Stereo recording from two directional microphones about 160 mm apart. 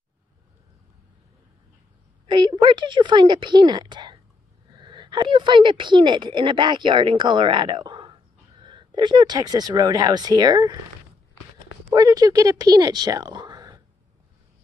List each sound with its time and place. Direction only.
2.2 s a woman's voice: 25° right (ahead or behind)
11.9 s speech: 25° right (ahead or behind)